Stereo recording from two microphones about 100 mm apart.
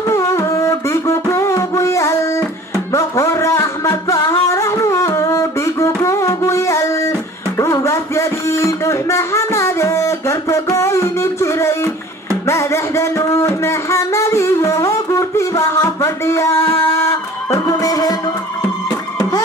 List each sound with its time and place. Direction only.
0.1 s music: 30° left (ahead or behind)
12.4 s a sound: 30° left (ahead or behind)
18.9 s music: 40° left (ahead or behind)